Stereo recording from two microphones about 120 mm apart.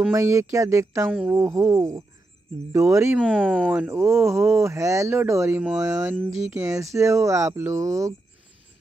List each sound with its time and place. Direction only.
0.1 s speech: 25° right (ahead or behind)
3.2 s speech: 5° left (ahead or behind)
3.7 s speech: 15° right (ahead or behind)